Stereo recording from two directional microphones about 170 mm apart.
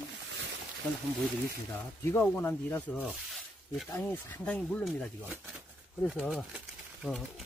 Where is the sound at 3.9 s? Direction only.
10° left (ahead or behind).